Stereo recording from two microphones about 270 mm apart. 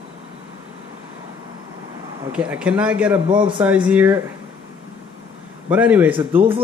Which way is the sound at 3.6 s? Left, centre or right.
Centre.